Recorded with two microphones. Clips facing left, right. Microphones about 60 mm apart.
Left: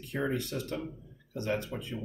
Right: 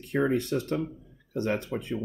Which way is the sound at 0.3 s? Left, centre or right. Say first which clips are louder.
Right 7 dB; right.